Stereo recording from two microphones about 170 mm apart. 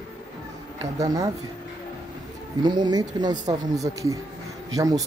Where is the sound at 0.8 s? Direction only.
20° right (ahead or behind).